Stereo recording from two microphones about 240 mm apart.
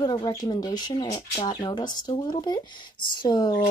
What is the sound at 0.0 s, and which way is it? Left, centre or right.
Speech, centre.